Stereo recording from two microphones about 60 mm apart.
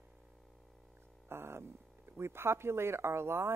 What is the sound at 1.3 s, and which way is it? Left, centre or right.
Speech, right.